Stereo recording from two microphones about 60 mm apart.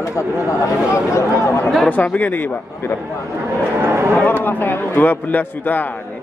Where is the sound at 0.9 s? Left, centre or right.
Left.